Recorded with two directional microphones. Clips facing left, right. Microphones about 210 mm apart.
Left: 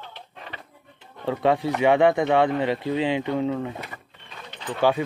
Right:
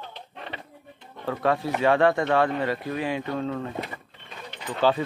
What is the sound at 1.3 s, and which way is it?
Speech, 20° left (ahead or behind).